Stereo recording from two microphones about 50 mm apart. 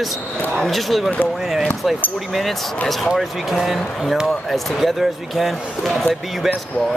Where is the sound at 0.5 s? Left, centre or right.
Centre.